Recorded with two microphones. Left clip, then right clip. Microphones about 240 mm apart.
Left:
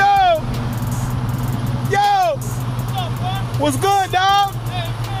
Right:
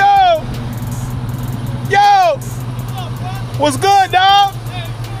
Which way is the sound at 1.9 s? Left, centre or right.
Right.